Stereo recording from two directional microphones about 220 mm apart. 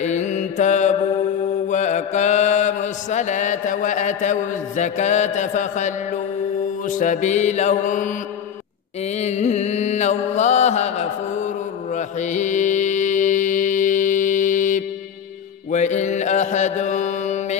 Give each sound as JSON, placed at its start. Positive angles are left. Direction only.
{"t": 0.0, "sound": "mantra", "side_deg": 30}
{"t": 9.1, "sound": "mantra", "side_deg": 30}